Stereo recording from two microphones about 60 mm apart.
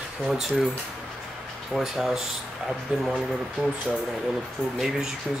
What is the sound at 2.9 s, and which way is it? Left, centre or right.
Speech, right.